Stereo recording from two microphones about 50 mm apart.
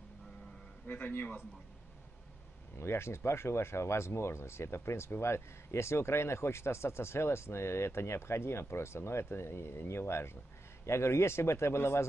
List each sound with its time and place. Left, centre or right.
0.8 s speech: left
2.8 s speech: left